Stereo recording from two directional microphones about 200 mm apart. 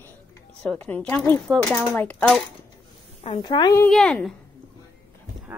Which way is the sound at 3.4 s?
20° left (ahead or behind).